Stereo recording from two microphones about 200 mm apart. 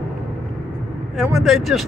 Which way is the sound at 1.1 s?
Centre (ahead or behind).